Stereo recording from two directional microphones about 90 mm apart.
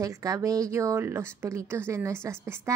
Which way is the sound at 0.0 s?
40° right (ahead or behind).